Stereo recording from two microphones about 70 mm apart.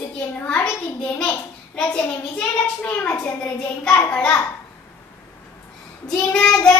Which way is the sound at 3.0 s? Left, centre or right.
Left.